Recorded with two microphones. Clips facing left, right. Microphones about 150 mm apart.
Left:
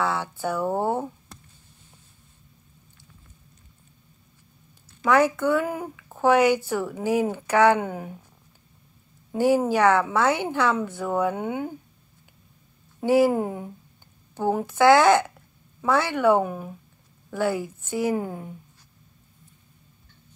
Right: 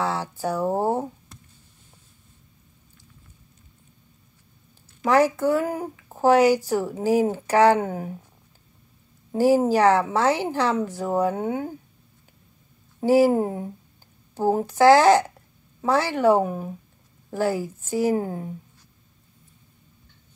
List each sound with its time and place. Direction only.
0.0 s speech: 35° right (ahead or behind)
5.0 s speech: 35° right (ahead or behind)
9.3 s speech: 35° right (ahead or behind)
13.0 s speech: 35° right (ahead or behind)